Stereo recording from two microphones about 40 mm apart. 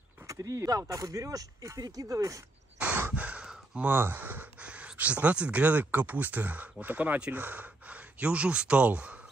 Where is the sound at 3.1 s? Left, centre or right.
Right.